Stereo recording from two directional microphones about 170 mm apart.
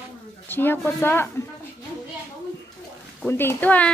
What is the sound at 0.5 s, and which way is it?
Speech, 10° left (ahead or behind).